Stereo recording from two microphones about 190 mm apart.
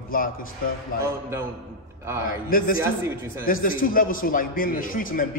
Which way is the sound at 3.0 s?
15° right (ahead or behind).